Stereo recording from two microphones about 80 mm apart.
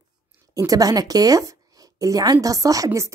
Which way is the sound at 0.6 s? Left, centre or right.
Right.